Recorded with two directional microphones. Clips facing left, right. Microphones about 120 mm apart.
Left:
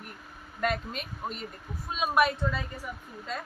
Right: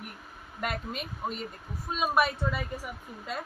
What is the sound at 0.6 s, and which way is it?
Speech, 5° right (ahead or behind).